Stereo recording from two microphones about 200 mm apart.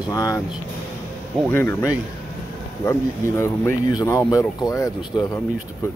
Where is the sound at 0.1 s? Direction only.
15° left (ahead or behind).